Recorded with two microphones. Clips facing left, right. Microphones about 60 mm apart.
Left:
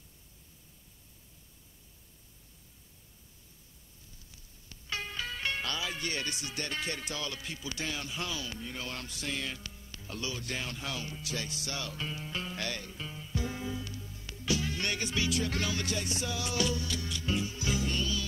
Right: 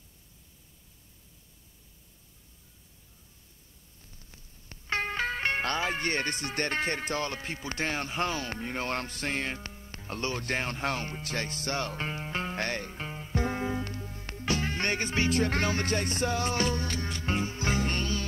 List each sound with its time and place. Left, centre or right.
4.3 s speech: right